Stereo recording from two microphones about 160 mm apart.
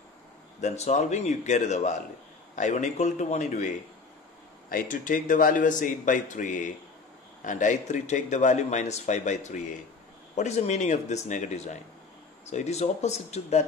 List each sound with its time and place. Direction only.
0.6 s speech: 45° left (ahead or behind)